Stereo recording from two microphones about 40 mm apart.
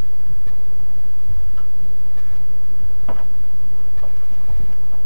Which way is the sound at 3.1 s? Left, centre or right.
Centre.